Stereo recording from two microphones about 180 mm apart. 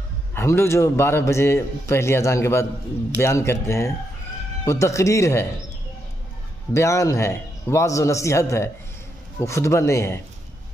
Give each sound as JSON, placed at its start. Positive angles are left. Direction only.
{"t": 0.3, "sound": "a man's voice", "side_deg": 15}
{"t": 6.7, "sound": "a man's voice", "side_deg": 15}